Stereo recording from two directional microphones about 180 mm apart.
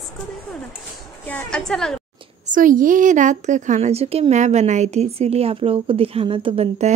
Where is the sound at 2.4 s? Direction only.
45° right (ahead or behind).